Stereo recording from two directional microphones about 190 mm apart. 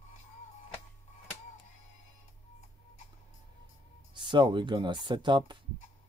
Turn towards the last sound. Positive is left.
turn(degrees=-25)  # may be behind; listen again after turning